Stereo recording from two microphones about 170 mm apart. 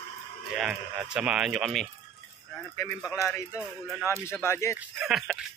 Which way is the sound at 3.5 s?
Centre (ahead or behind).